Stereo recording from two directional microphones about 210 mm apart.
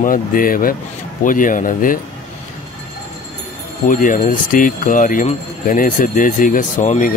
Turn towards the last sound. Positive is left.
turn(degrees=40)  # may be behind; listen again after turning